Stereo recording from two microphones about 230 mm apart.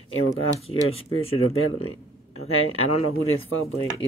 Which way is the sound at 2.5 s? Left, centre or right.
Left.